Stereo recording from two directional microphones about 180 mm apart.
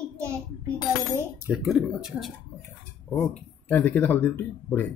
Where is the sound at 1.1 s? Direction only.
10° right (ahead or behind).